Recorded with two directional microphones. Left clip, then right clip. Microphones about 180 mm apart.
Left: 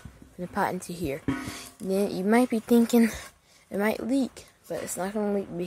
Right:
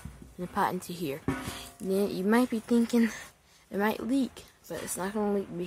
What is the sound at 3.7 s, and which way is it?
Speech, 10° left (ahead or behind).